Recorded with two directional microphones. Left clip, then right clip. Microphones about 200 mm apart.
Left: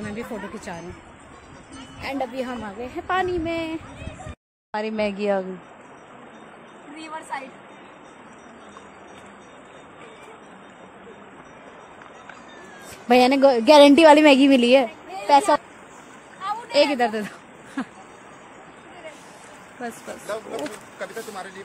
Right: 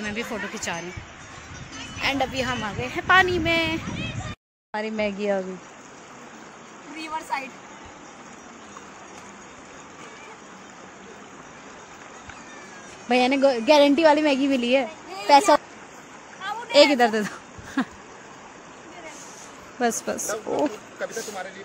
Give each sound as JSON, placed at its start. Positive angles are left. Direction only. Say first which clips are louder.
{"t": 0.0, "sound": "a woman's voice", "louder": "right 3 dB", "side_deg": 0}
{"t": 2.0, "sound": "a woman's voice", "louder": "right 3 dB", "side_deg": 0}
{"t": 4.7, "sound": "speech", "louder": "left 2 dB", "side_deg": 10}
{"t": 7.0, "sound": "a sound", "louder": "right 3 dB", "side_deg": -55}
{"t": 13.1, "sound": "speech", "louder": "left 4 dB", "side_deg": 20}
{"t": 13.7, "sound": "a woman's voice", "louder": "left 6 dB", "side_deg": 35}
{"t": 15.2, "sound": "a child's voice", "louder": "right 1 dB", "side_deg": 0}
{"t": 16.7, "sound": "speech", "louder": "right 3 dB", "side_deg": -15}
{"t": 17.8, "sound": "a sound", "louder": "right 4 dB", "side_deg": -20}
{"t": 20.5, "sound": "speech", "louder": "right 6 dB", "side_deg": -40}